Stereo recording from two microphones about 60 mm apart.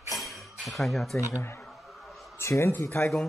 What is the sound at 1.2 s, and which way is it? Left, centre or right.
Speech, left.